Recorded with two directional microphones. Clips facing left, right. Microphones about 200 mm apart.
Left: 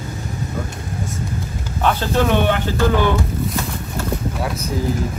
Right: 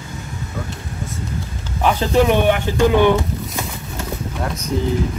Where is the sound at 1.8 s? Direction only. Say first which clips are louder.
Right 3 dB; 15° right (ahead or behind).